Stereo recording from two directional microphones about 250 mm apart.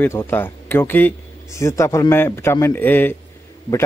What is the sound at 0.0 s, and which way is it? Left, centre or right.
A man's voice, centre.